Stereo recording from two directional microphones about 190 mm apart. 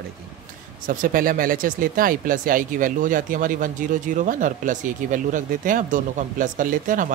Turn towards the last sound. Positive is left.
turn(degrees=-45)  # may be behind; listen again after turning